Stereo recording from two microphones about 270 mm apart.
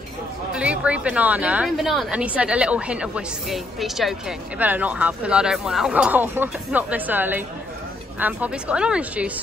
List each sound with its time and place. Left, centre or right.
0.5 s speech: centre